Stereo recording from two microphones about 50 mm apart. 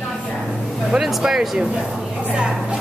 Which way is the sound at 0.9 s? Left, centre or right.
Centre.